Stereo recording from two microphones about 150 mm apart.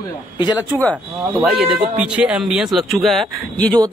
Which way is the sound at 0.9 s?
5° right (ahead or behind).